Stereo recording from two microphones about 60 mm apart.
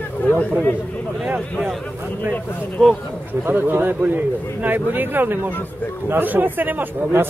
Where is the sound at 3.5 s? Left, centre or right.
Right.